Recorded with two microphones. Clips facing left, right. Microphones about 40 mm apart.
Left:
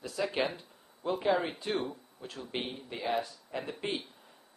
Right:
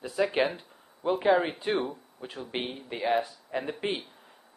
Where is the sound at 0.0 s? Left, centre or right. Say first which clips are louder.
Right 5 dB; centre.